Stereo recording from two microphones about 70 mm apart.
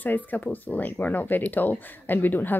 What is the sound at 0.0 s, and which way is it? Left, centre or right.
Speech, left.